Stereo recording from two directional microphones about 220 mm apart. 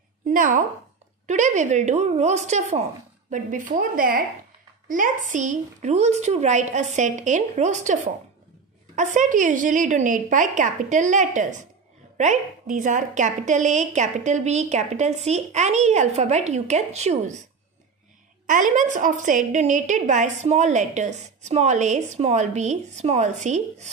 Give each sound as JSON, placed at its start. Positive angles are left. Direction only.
{"t": 0.3, "sound": "a woman's voice", "side_deg": -40}
{"t": 18.5, "sound": "a woman's voice", "side_deg": -35}